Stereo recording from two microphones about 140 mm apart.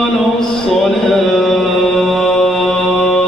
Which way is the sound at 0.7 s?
Centre (ahead or behind).